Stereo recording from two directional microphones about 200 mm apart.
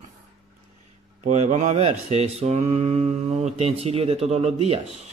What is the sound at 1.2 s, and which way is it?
Speech, 40° right (ahead or behind).